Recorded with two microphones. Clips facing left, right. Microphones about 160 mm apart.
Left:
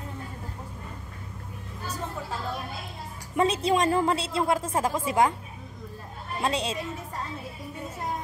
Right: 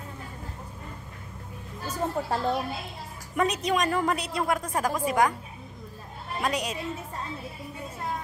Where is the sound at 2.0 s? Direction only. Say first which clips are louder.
Right 9 dB; 50° right (ahead or behind).